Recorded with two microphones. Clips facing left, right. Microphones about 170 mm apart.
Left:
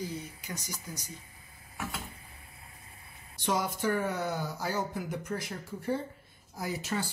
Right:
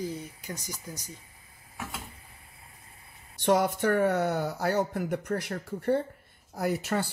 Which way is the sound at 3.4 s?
65° right (ahead or behind).